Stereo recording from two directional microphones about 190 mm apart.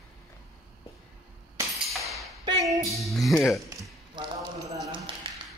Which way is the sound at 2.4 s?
20° right (ahead or behind).